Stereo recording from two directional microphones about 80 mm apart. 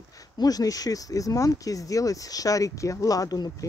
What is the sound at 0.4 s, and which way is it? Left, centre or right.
Speech, left.